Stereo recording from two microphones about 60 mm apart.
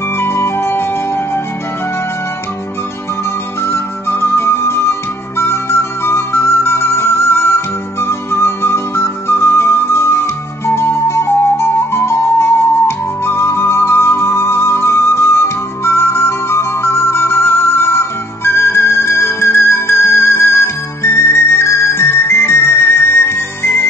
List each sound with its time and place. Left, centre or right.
0.2 s music: left
3.6 s music: left